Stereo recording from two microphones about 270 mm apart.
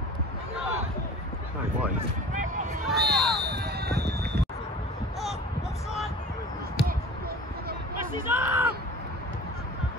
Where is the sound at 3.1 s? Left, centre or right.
Centre.